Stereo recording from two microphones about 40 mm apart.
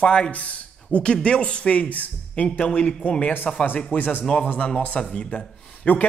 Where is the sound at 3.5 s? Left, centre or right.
Centre.